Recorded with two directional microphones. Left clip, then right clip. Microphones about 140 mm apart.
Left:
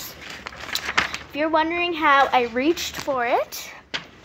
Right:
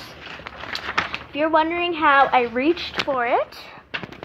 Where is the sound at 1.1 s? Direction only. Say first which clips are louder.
Right 2 dB; 10° left (ahead or behind).